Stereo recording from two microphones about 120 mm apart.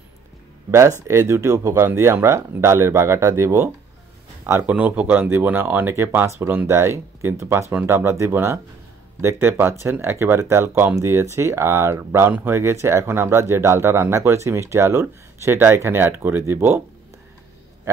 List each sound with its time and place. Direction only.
0.7 s speech: 25° right (ahead or behind)